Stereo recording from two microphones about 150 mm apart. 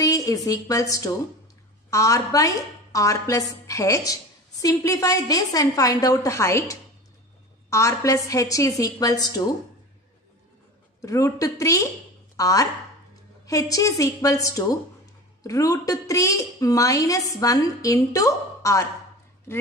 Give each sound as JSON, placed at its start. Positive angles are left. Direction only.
{"t": 0.0, "sound": "a woman's voice", "side_deg": 25}
{"t": 11.0, "sound": "a woman's voice", "side_deg": 20}